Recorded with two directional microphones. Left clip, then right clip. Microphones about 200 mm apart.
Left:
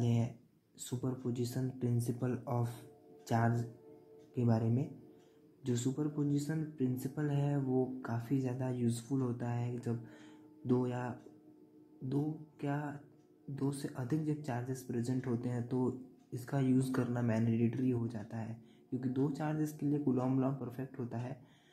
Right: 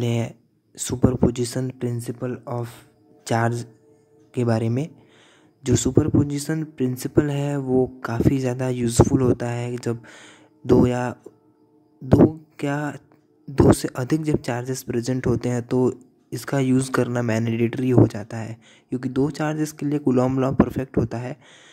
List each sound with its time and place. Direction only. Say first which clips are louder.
0.0 s speech: right 12 dB; 30° right (ahead or behind)
3.3 s speech: right 12 dB; 25° right (ahead or behind)